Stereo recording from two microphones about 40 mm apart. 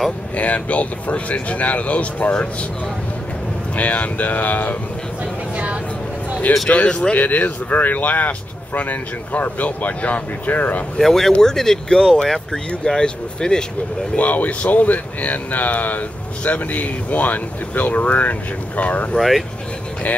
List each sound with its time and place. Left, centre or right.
0.4 s speech: left
3.7 s speech: left
6.7 s speech: left
7.2 s speech: left
11.0 s speech: centre
14.1 s speech: left
19.1 s speech: centre